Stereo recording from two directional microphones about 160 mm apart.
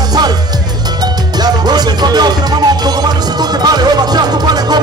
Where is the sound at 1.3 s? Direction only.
25° right (ahead or behind).